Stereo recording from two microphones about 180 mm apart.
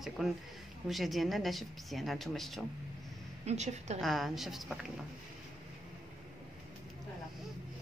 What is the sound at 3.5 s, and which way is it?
Speech, 40° right (ahead or behind).